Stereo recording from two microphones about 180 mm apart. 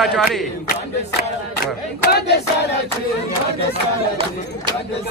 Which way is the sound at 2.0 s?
65° left (ahead or behind).